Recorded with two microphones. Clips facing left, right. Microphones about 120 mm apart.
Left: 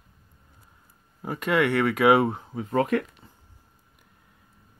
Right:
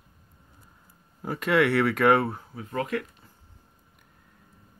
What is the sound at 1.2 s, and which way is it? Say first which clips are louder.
Speech: right 1 dB; centre (ahead or behind).